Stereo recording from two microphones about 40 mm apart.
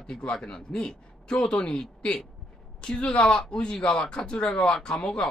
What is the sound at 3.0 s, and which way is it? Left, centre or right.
Speech, left.